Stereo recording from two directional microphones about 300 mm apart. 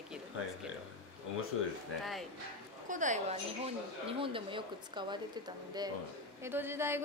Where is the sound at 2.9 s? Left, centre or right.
Right.